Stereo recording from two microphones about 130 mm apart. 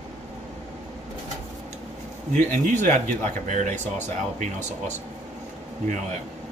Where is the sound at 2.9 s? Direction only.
70° right (ahead or behind).